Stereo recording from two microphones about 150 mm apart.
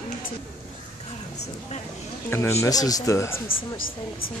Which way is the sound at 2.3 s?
15° left (ahead or behind).